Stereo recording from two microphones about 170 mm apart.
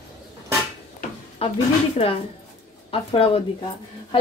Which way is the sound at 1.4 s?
35° left (ahead or behind).